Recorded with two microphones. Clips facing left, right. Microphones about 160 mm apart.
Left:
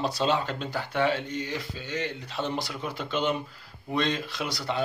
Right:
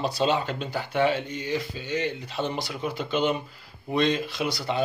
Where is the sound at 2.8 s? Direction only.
5° right (ahead or behind).